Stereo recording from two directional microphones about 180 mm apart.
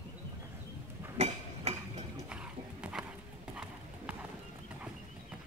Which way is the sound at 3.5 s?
5° right (ahead or behind).